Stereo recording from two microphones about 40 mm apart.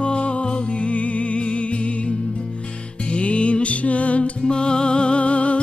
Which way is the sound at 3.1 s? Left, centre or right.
Left.